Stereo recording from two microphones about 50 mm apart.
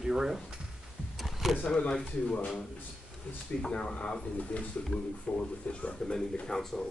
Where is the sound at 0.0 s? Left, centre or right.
Centre.